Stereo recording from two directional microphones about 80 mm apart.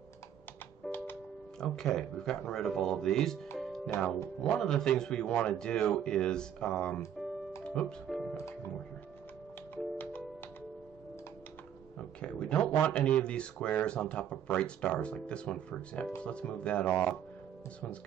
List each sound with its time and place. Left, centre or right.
0.8 s music: centre
1.6 s a man's voice: centre
3.5 s music: centre
4.4 s a man's voice: centre
7.6 s music: centre
8.1 s music: centre
12.0 s a man's voice: centre